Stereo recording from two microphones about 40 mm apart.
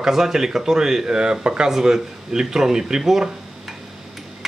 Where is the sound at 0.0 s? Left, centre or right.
Centre.